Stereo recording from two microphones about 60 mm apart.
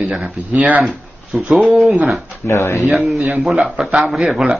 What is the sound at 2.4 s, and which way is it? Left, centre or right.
Speech, left.